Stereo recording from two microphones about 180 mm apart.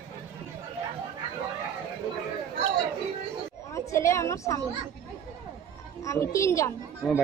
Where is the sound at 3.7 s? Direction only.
15° left (ahead or behind).